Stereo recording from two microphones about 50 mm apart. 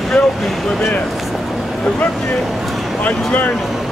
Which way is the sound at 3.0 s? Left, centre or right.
Left.